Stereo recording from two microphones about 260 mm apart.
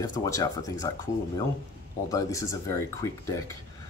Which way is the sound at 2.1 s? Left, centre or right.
Centre.